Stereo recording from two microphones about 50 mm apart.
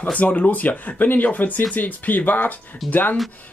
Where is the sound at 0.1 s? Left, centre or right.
Left.